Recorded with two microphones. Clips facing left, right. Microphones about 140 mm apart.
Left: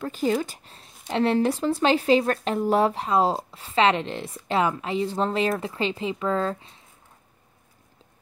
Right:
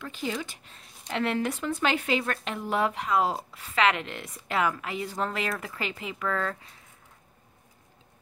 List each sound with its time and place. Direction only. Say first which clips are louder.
0.0 s speech: left 8 dB; 40° left (ahead or behind); by 6.8 s 25° left (ahead or behind)